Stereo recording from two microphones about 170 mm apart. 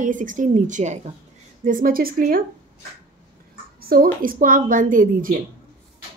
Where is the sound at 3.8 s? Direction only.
60° right (ahead or behind).